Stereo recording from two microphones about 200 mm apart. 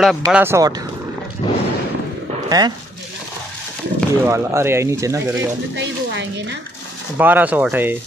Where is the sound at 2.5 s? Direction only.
20° right (ahead or behind).